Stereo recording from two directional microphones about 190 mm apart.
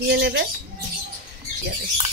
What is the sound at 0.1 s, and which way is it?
Speech, 60° right (ahead or behind).